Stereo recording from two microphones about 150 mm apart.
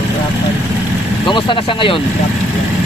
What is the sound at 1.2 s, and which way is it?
Speech, 35° left (ahead or behind).